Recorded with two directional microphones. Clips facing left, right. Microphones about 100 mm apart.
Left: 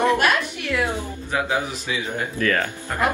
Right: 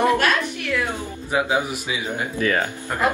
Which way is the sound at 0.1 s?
15° left (ahead or behind).